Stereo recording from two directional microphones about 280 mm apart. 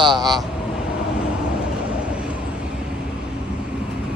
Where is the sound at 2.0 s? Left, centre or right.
Centre.